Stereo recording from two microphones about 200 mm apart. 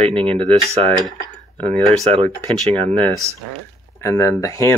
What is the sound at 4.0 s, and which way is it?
Speech, 15° left (ahead or behind).